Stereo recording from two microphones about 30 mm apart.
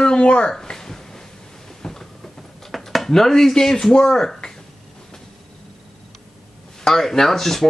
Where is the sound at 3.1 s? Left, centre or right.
Centre.